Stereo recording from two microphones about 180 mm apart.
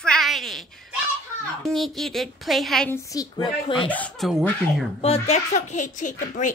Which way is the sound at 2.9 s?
20° left (ahead or behind).